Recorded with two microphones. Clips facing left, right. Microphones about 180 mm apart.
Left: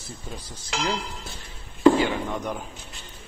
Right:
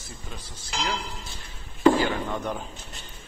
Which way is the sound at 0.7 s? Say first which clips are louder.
Left 3 dB; 80° left.